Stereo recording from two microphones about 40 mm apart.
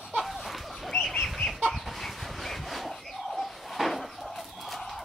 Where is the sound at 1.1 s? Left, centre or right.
Left.